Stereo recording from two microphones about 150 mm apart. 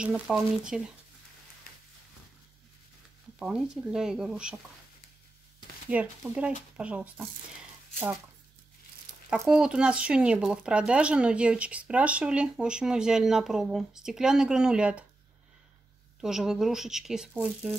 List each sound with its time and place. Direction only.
0.0 s speech: 5° right (ahead or behind)
3.3 s speech: 5° right (ahead or behind)
5.9 s speech: 10° right (ahead or behind)
9.5 s speech: 5° right (ahead or behind)
16.2 s speech: 5° right (ahead or behind)